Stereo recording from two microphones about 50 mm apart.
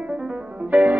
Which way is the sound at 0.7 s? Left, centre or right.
Right.